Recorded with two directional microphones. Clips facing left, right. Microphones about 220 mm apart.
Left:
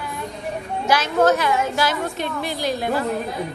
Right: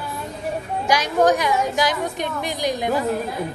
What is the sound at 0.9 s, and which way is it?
A woman's voice, 15° right (ahead or behind).